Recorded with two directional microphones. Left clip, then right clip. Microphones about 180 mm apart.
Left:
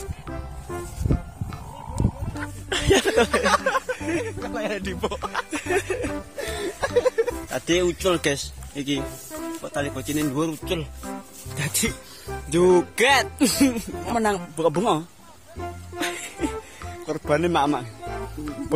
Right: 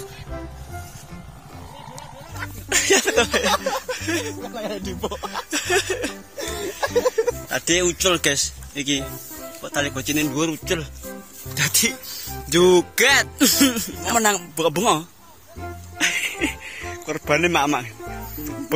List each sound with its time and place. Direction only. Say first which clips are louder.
2.7 s speech: right 2 dB; 20° left (ahead or behind); by 6.1 s centre (ahead or behind)
6.8 s music: right 1 dB; 45° right (ahead or behind)
7.4 s speech: right 2 dB; 5° left (ahead or behind)
9.8 s speech: right 5 dB; 5° right (ahead or behind)
11.5 s music: right 6 dB; 5° right (ahead or behind)
12.4 s speech: right 3 dB; centre (ahead or behind)
16.0 s music: right 7 dB; centre (ahead or behind)
17.0 s speech: right 3 dB; 5° left (ahead or behind)